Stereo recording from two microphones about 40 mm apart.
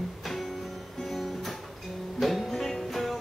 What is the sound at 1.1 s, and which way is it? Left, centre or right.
Music, centre.